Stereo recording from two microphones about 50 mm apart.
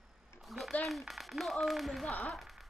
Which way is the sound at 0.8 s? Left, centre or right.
Centre.